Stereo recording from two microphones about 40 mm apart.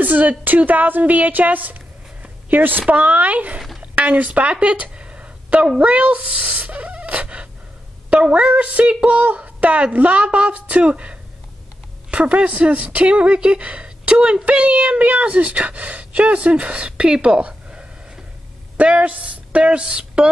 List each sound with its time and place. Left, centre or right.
0.0 s a woman's voice: right
3.8 s a sound: right
5.8 s speech: right
18.8 s speech: right